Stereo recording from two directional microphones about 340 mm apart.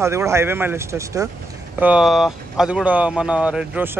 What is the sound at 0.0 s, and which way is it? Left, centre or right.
Speech, centre.